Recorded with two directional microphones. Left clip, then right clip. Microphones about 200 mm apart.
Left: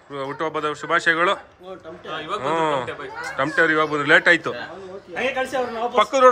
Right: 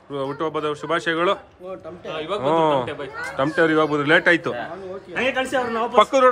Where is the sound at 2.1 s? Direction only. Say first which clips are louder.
Right 1 dB; 40° right (ahead or behind).